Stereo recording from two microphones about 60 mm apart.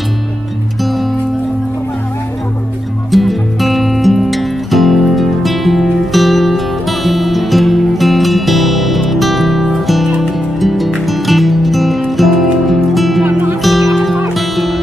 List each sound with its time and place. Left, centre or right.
3.1 s music: centre
13.3 s music: right
13.6 s music: centre